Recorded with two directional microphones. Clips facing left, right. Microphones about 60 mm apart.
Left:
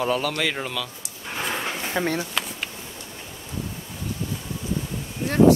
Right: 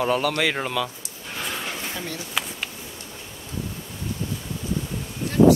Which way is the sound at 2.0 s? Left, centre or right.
Left.